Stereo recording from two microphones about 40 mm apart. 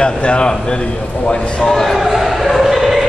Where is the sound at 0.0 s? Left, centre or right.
Left.